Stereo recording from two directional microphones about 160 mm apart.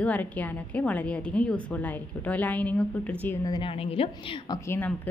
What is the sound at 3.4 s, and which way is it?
Speech, 30° left (ahead or behind).